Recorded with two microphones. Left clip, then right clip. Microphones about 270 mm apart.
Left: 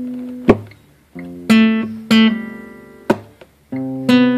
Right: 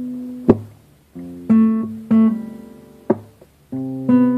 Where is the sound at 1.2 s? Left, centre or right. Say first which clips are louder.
Left 3 dB; left.